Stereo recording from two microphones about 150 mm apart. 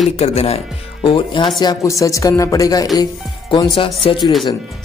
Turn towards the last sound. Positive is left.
turn(degrees=35)  # may be behind; listen again after turning